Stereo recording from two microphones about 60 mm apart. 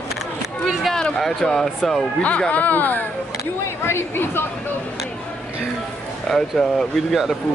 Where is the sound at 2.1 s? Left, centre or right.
Centre.